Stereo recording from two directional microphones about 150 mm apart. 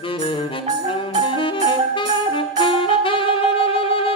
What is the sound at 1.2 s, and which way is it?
Music, 35° left (ahead or behind).